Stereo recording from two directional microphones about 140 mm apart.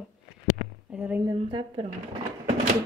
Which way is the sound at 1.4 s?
40° right (ahead or behind).